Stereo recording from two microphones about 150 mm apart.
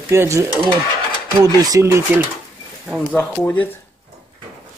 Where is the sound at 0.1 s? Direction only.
20° right (ahead or behind).